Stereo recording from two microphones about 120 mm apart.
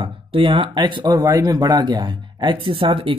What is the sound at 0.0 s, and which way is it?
A man's voice, 50° right (ahead or behind).